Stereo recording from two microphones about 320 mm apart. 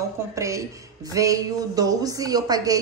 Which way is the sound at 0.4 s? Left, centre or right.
Centre.